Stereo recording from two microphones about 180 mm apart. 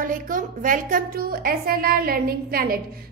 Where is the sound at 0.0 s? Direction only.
50° right (ahead or behind).